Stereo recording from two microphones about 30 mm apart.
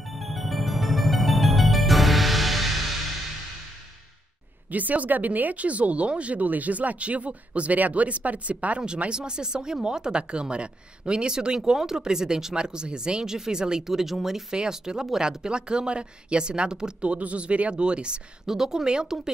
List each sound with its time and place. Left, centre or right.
0.0 s music: centre
4.6 s speech: right
7.0 s speech: right
7.7 s speech: right
9.1 s speech: right
12.5 s speech: right
13.8 s speech: centre
14.5 s speech: right
17.0 s speech: right
18.4 s speech: centre